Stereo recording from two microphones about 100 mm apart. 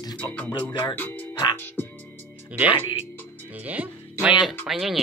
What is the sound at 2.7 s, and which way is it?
Speech, 60° left (ahead or behind).